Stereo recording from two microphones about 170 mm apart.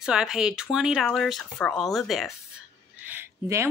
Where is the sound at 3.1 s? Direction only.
15° right (ahead or behind).